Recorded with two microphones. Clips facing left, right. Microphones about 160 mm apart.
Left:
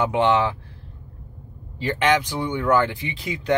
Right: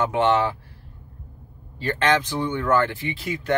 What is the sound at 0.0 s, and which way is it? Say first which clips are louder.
Speech: left 1 dB; 15° left (ahead or behind).